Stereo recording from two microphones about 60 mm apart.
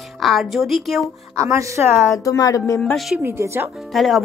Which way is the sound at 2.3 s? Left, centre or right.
Left.